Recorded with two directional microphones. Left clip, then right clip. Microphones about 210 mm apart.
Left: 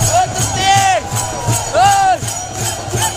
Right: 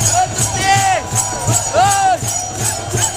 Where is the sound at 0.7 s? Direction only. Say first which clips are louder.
Left 2 dB; 30° left (ahead or behind).